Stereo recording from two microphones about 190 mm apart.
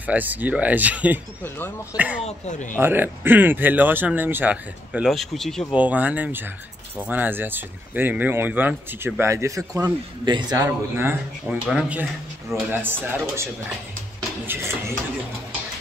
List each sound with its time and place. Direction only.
0.0 s speech: 10° right (ahead or behind)
2.2 s speech: 40° left (ahead or behind)
2.8 s speech: 10° right (ahead or behind)
14.5 s speech: 15° right (ahead or behind)